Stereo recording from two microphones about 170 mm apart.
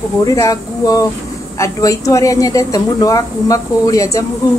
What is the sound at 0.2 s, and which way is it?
A woman's voice, 20° left (ahead or behind).